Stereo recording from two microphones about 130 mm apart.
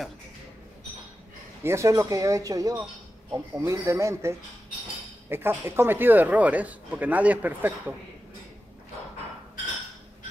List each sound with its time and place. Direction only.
1.6 s speech: 20° right (ahead or behind)